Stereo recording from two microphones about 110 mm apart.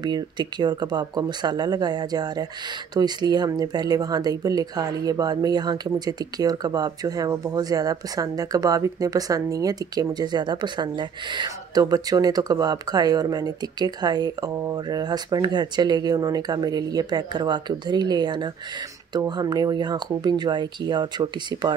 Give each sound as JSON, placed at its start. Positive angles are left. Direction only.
{"t": 0.0, "sound": "speech", "side_deg": -40}